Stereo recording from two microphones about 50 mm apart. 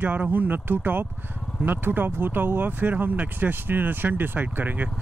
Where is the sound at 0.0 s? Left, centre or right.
Right.